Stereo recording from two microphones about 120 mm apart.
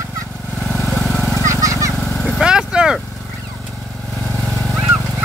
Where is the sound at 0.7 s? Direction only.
Centre (ahead or behind).